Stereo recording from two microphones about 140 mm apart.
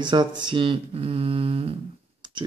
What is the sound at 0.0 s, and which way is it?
Speech, 30° right (ahead or behind).